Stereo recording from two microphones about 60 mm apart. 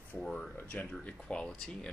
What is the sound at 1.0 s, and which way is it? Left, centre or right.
Speech, centre.